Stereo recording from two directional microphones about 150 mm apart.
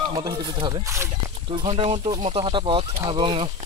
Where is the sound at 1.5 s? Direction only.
35° right (ahead or behind).